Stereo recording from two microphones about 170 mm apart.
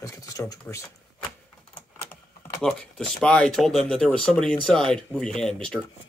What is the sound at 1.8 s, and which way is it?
Typing, 15° left (ahead or behind).